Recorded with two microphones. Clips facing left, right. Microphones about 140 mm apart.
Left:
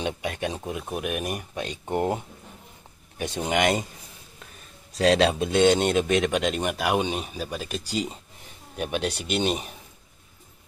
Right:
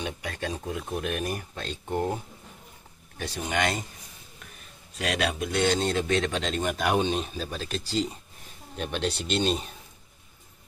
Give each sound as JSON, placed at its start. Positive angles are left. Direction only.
{"t": 0.0, "sound": "speech", "side_deg": 20}
{"t": 3.2, "sound": "speech", "side_deg": 20}
{"t": 4.9, "sound": "speech", "side_deg": 30}